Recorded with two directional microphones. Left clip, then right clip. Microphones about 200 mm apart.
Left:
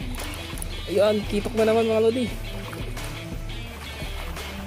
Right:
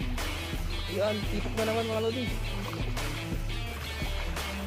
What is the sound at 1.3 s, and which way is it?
Speech, 50° left (ahead or behind).